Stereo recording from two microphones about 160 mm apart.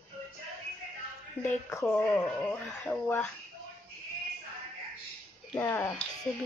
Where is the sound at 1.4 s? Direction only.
20° left (ahead or behind).